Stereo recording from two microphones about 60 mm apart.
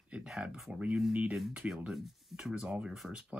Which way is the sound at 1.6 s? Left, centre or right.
Right.